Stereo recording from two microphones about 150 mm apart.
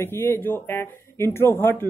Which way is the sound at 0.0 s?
15° left (ahead or behind).